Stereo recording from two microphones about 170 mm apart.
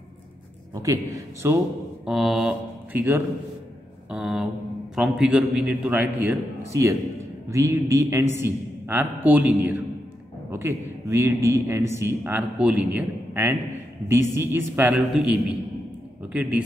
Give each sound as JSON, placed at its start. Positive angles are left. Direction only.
{"t": 1.1, "sound": "a man's voice", "side_deg": -15}
{"t": 2.0, "sound": "speech", "side_deg": 0}
{"t": 4.1, "sound": "a sound", "side_deg": -5}
{"t": 4.9, "sound": "a man's voice", "side_deg": -5}